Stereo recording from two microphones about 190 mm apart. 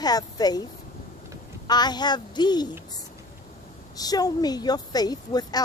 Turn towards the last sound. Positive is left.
turn(degrees=20)  # may be behind; listen again after turning